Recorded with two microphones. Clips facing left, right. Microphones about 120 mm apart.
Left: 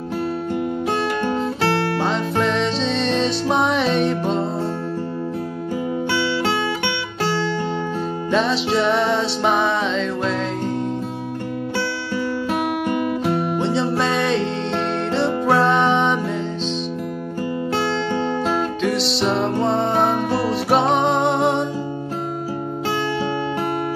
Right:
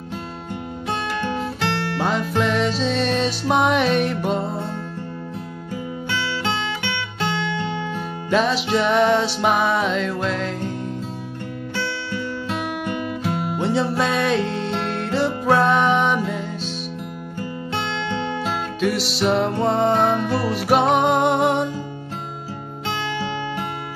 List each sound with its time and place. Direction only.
2.0 s music: 5° right (ahead or behind)
8.3 s music: 5° right (ahead or behind)
13.7 s music: 5° right (ahead or behind)
18.8 s music: 5° right (ahead or behind)
20.3 s music: 25° left (ahead or behind)
20.6 s music: 5° right (ahead or behind)